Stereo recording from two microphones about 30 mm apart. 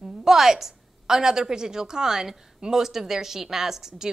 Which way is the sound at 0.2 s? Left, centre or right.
Centre.